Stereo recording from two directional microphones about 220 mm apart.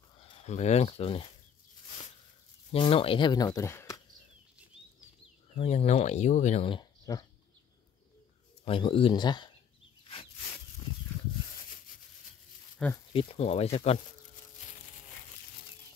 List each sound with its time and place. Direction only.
0.2 s speech: 25° left (ahead or behind)
2.7 s speech: 25° left (ahead or behind)
5.5 s speech: 30° left (ahead or behind)
8.6 s speech: 25° left (ahead or behind)
12.7 s speech: 5° left (ahead or behind)
13.1 s speech: 25° left (ahead or behind)